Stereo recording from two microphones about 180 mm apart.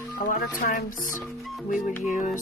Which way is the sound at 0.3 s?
45° left (ahead or behind).